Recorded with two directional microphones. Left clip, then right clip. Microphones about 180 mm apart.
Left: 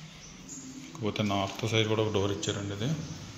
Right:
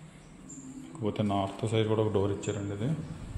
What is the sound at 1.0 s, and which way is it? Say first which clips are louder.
Speech: even; 20° right (ahead or behind).